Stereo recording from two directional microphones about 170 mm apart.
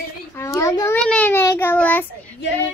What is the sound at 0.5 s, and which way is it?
Speech, 20° left (ahead or behind).